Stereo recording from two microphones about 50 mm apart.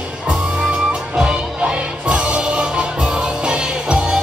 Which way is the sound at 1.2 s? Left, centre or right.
Centre.